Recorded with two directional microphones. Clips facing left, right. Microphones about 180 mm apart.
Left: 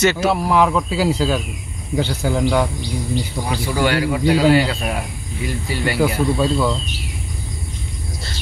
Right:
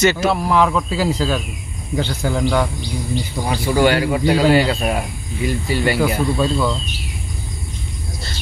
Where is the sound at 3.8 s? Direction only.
20° right (ahead or behind).